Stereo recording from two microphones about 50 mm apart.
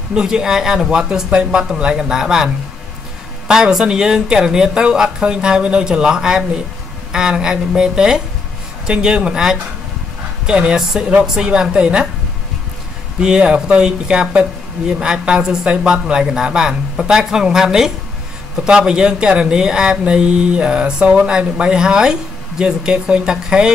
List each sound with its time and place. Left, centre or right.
0.1 s speech: centre
13.2 s speech: centre